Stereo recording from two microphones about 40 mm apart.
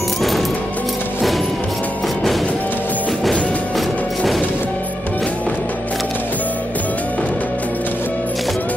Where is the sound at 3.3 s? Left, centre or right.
Left.